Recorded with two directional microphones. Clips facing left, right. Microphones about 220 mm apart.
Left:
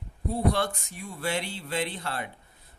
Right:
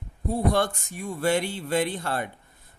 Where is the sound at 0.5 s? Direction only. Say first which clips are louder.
Right 3 dB; 50° right (ahead or behind).